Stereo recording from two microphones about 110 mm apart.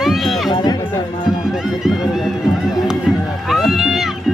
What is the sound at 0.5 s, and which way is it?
Speech, 40° left (ahead or behind).